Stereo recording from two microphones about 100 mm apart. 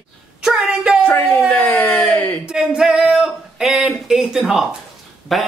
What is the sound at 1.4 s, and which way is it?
Speech, 20° left (ahead or behind).